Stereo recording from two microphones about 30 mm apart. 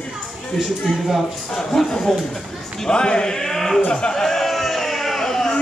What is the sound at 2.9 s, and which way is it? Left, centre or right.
Speech, left.